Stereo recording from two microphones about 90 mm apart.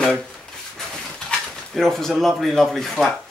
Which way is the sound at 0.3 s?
Centre (ahead or behind).